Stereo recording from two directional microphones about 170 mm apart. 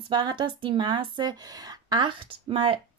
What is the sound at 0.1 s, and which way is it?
A woman's voice, 25° right (ahead or behind).